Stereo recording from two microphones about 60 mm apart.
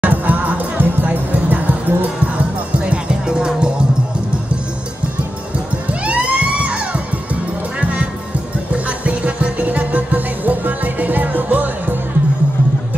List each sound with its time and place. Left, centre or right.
0.0 s music: right
2.8 s music: centre
5.9 s music: right